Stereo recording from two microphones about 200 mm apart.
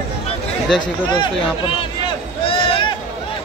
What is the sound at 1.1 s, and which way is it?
Speech, 25° left (ahead or behind).